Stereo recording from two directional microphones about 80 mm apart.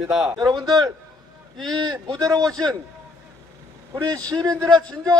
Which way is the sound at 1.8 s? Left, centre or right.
Right.